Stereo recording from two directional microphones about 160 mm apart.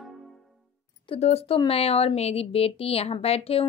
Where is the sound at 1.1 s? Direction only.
40° left (ahead or behind).